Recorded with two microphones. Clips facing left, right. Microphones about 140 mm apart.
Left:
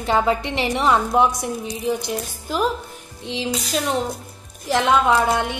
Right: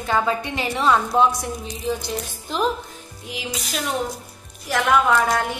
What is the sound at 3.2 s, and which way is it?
Speech, 30° left (ahead or behind).